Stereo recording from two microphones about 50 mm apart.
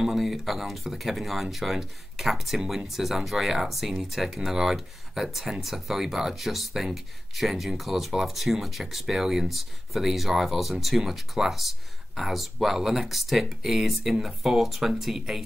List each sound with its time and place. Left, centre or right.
0.0 s speech: centre